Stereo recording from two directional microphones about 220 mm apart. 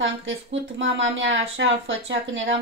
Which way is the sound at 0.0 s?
60° right (ahead or behind).